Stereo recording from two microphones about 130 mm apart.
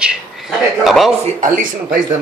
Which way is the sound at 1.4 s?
90° right.